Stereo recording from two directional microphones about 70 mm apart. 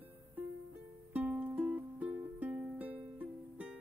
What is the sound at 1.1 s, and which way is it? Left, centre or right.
Music, right.